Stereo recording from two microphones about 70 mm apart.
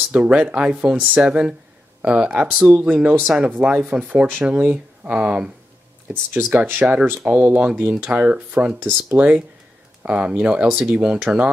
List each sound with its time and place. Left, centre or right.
0.1 s speech: centre
6.3 s speech: right